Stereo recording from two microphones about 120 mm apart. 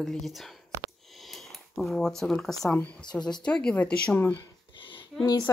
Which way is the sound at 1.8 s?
5° left (ahead or behind).